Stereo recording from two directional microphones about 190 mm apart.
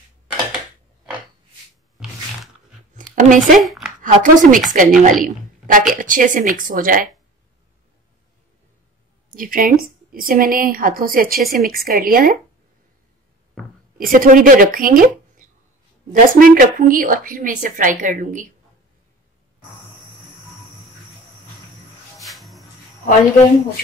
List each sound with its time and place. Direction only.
3.2 s speech: 40° right (ahead or behind)
3.5 s speech: centre (ahead or behind)
4.0 s a woman's voice: 45° right (ahead or behind)
9.3 s a woman's voice: 45° right (ahead or behind)
13.9 s a woman's voice: 45° right (ahead or behind)
22.2 s music: centre (ahead or behind)